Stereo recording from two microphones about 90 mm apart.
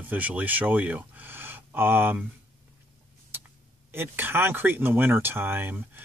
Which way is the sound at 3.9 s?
25° right (ahead or behind).